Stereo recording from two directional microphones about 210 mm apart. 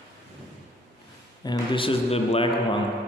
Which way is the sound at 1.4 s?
20° left (ahead or behind).